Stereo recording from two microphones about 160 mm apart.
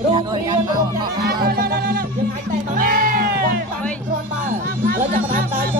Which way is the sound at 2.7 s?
60° right (ahead or behind).